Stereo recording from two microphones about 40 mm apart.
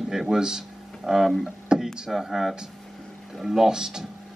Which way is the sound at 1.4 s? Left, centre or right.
Centre.